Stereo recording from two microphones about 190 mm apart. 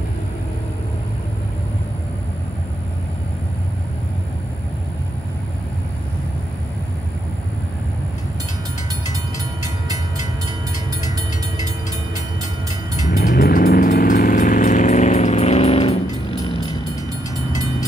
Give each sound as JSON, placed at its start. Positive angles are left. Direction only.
{"t": 13.2, "sound": "vehicle", "side_deg": 45}